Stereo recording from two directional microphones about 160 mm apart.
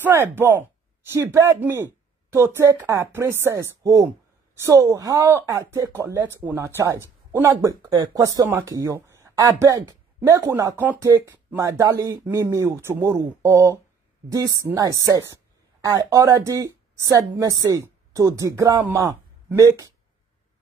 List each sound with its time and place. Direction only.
0.0 s a woman's voice: 15° right (ahead or behind)